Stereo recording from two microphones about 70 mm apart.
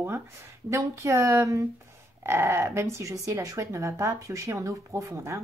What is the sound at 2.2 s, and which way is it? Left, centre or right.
Speech, right.